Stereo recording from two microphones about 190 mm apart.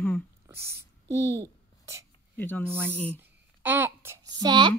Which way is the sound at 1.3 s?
15° right (ahead or behind).